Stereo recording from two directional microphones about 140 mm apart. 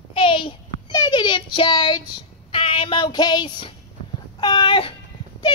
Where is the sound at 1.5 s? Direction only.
35° left (ahead or behind).